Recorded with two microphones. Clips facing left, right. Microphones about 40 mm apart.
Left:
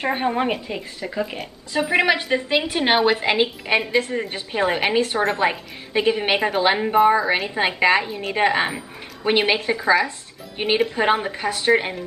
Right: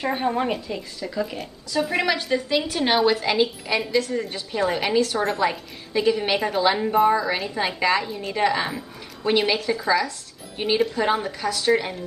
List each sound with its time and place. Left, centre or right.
0.0 s a woman's voice: left